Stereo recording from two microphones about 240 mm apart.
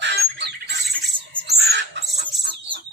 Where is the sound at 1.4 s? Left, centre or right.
Right.